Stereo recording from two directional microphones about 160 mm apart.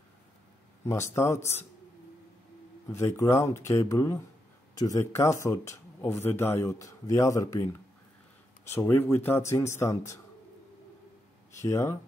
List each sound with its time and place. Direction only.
1.1 s speech: 15° left (ahead or behind)
2.9 s speech: 20° left (ahead or behind)
11.5 s speech: 15° left (ahead or behind)